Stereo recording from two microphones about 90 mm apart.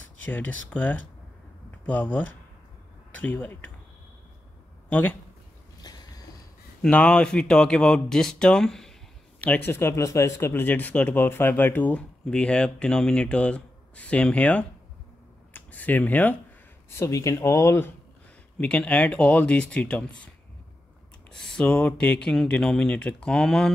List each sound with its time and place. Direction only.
0.2 s speech: 20° left (ahead or behind)
4.8 s a sound: 15° left (ahead or behind)
5.8 s a sound: 50° left (ahead or behind)
6.8 s speech: 10° left (ahead or behind)
9.4 s speech: 20° left (ahead or behind)
16.9 s speech: 35° left (ahead or behind)
18.6 s speech: 15° left (ahead or behind)
21.3 s speech: 10° left (ahead or behind)